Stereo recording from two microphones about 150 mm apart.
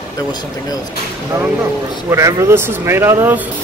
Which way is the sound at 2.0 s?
20° right (ahead or behind).